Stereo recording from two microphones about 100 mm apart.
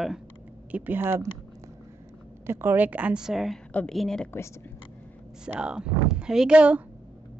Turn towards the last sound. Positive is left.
turn(degrees=-10)  # may be behind; listen again after turning